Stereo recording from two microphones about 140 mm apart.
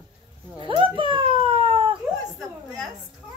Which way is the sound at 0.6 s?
35° right (ahead or behind).